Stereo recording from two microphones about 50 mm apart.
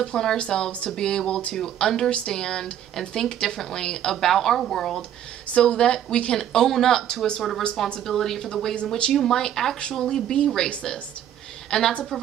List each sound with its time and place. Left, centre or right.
0.0 s speech: centre
5.5 s speech: centre
6.3 s speech: centre
11.7 s speech: centre